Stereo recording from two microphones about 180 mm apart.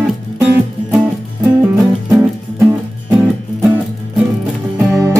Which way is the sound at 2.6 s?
15° right (ahead or behind).